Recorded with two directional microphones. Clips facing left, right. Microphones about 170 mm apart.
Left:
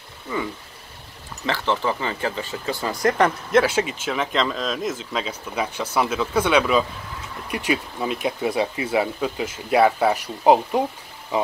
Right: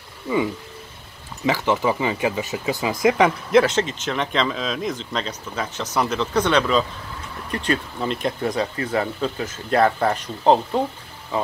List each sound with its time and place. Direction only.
1.4 s speech: 10° right (ahead or behind); by 11.5 s 15° left (ahead or behind)